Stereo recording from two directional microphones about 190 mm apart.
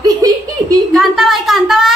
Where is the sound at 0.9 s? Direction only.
Centre (ahead or behind).